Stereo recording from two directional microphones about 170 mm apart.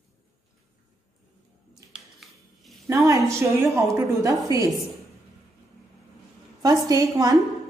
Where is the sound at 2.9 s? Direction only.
20° right (ahead or behind).